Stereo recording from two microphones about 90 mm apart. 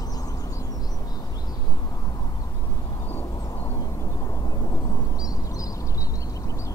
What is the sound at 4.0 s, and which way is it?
Vehicle, 40° left (ahead or behind).